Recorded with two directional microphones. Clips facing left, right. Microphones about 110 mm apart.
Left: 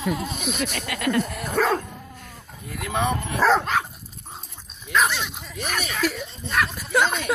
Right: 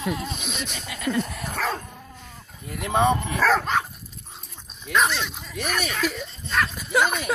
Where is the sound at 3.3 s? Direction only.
20° left (ahead or behind).